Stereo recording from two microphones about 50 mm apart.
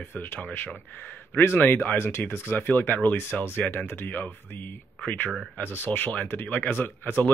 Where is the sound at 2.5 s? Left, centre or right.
Left.